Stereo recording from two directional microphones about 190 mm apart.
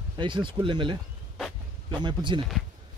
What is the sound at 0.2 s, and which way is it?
Speech, 25° right (ahead or behind).